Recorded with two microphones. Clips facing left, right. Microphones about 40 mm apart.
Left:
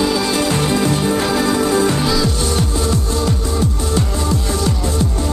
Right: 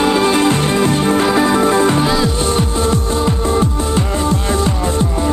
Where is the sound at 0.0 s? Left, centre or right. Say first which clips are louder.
Right 4 dB; right.